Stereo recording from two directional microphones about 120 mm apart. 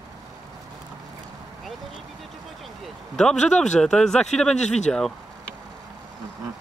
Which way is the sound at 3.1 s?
5° left (ahead or behind).